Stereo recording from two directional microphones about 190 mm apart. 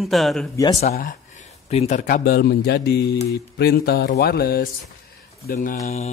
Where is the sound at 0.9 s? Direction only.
45° left (ahead or behind).